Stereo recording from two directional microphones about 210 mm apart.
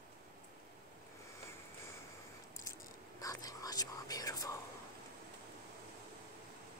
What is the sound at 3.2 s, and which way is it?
Whispering, 15° left (ahead or behind).